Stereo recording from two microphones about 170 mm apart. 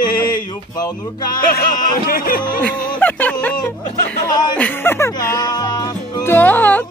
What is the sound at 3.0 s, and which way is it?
Music, 10° left (ahead or behind).